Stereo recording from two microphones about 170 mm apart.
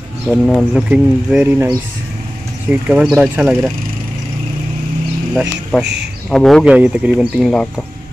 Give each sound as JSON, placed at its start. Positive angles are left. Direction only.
{"t": 0.3, "sound": "speech", "side_deg": 5}
{"t": 0.8, "sound": "speech", "side_deg": -5}
{"t": 2.7, "sound": "speech", "side_deg": -5}
{"t": 5.3, "sound": "speech", "side_deg": 0}